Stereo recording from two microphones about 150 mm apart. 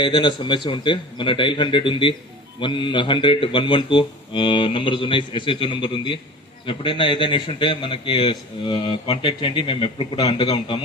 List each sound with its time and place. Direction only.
0.0 s a man's voice: 30° left (ahead or behind)